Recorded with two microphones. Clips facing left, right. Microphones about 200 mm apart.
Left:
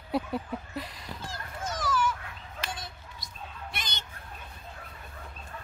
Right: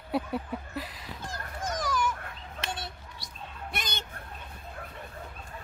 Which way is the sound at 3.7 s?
50° right (ahead or behind).